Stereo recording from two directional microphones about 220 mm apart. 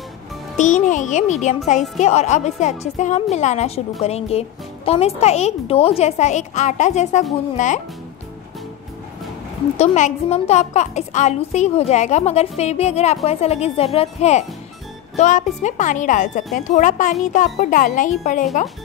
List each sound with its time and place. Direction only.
0.6 s a woman's voice: 35° left (ahead or behind)
9.8 s a woman's voice: 30° left (ahead or behind)